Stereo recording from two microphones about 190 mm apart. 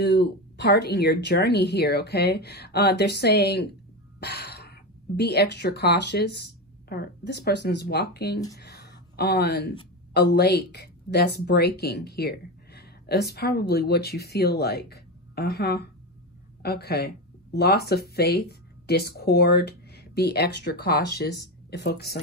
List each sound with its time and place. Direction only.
0.0 s speech: 60° left (ahead or behind)